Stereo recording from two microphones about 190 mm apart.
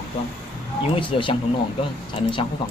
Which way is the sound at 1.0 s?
25° left (ahead or behind).